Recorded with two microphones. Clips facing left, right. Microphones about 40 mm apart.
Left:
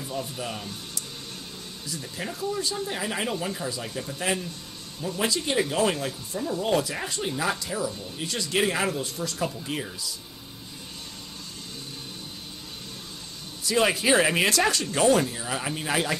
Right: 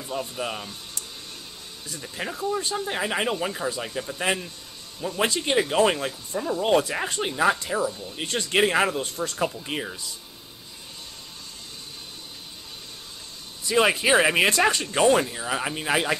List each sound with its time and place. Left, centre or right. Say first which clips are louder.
0.1 s speech: right 4 dB; right
2.1 s speech: right 3 dB; right
9.6 s speech: right 1 dB; right
13.7 s speech: right 2 dB; centre